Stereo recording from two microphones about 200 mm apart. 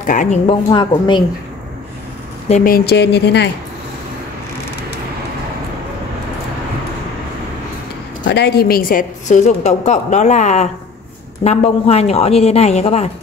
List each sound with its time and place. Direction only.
0.0 s a woman's voice: 40° left (ahead or behind)
0.5 s speech: 25° left (ahead or behind)
2.4 s speech: 40° left (ahead or behind); by 3.4 s 55° left (ahead or behind)
8.3 s a woman's voice: 55° left (ahead or behind); by 13.1 s 30° left (ahead or behind)